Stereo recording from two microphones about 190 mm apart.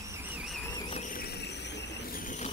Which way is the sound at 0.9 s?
45° left (ahead or behind).